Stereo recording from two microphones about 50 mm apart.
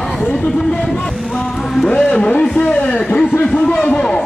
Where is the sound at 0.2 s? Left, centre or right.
Left.